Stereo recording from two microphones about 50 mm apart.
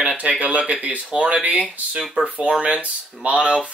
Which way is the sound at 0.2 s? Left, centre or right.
Right.